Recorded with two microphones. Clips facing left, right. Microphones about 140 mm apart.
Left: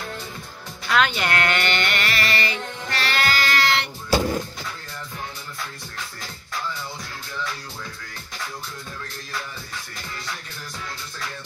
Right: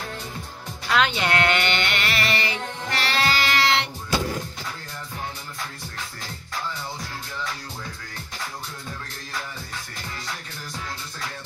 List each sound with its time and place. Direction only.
0.8 s music: 25° right (ahead or behind)